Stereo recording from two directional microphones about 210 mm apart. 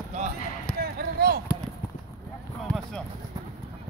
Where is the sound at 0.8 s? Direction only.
50° right (ahead or behind).